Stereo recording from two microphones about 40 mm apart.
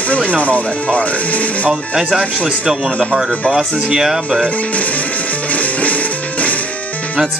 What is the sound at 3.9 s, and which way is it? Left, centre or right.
Speech, centre.